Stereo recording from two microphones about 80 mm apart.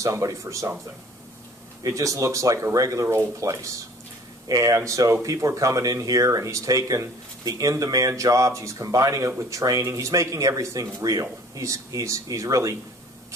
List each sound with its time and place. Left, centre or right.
0.0 s speech: right
1.9 s speech: right